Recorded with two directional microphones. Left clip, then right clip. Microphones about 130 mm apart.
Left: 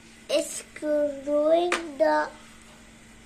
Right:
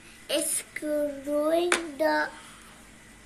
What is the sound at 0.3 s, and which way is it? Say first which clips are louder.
Speech: left 3 dB; 15° left (ahead or behind).